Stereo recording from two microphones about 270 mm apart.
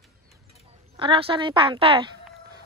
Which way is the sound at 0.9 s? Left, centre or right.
Centre.